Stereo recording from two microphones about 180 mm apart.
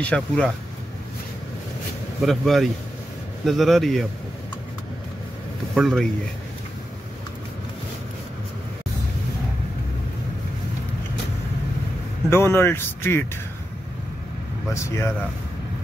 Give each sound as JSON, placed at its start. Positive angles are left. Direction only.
{"t": 0.0, "sound": "speech", "side_deg": 5}
{"t": 2.2, "sound": "speech", "side_deg": 0}
{"t": 5.8, "sound": "speech", "side_deg": 0}
{"t": 12.3, "sound": "speech", "side_deg": 15}
{"t": 14.7, "sound": "speech", "side_deg": 15}